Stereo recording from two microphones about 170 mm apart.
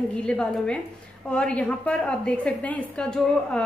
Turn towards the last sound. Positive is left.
turn(degrees=5)  # may be behind; listen again after turning